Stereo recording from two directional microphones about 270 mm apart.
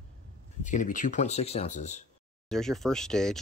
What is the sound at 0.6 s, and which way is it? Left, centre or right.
Speech, left.